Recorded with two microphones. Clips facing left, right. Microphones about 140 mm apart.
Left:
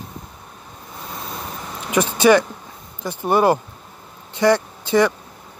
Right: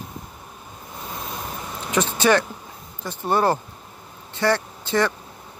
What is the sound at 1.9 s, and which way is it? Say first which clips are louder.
Speech: left 5 dB; 10° left (ahead or behind).